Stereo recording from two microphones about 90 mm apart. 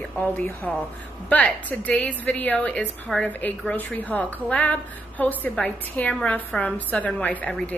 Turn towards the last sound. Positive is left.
turn(degrees=15)  # may be behind; listen again after turning